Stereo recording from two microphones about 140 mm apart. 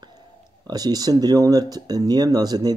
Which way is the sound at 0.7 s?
30° right (ahead or behind).